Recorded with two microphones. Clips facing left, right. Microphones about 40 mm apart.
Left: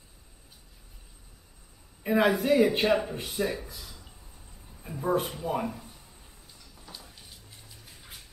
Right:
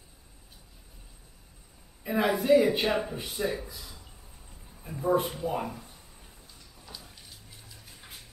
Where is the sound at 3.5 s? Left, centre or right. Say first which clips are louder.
Even; centre.